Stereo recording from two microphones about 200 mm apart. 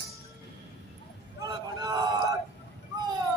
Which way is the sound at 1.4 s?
20° right (ahead or behind).